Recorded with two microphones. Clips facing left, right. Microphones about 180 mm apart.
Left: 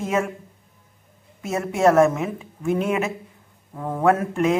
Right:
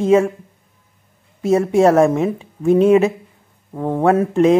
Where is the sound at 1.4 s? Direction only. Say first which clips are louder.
Right 6 dB; 30° right (ahead or behind).